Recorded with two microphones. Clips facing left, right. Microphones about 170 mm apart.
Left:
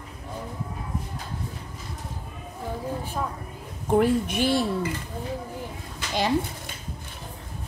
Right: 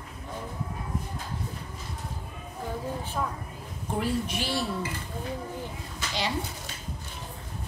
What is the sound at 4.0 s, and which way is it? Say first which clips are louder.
Speech: left 5 dB; 55° left (ahead or behind).